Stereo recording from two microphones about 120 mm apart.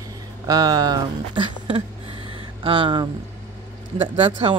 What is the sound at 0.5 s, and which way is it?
Speech, 30° right (ahead or behind).